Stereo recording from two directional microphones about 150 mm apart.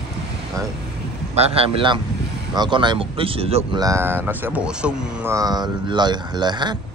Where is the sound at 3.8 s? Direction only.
20° right (ahead or behind).